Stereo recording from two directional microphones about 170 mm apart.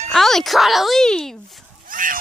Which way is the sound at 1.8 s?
55° right (ahead or behind).